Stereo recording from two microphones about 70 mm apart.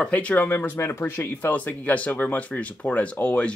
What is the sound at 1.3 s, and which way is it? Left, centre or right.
Speech, left.